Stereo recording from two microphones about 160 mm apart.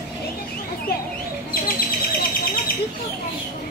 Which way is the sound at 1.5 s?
70° left (ahead or behind).